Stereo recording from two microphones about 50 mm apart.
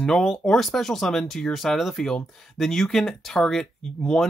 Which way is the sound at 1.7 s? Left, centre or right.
Centre.